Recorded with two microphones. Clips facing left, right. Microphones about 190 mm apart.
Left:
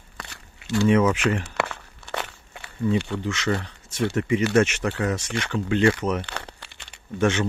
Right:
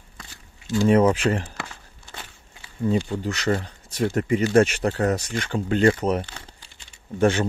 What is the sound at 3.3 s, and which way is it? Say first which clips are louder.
Speech: right 1 dB; 40° right (ahead or behind).